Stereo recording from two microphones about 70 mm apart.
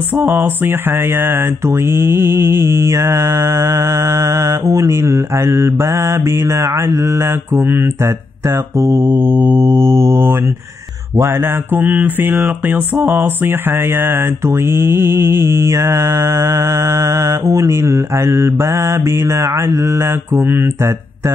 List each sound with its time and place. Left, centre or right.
0.1 s mantra: right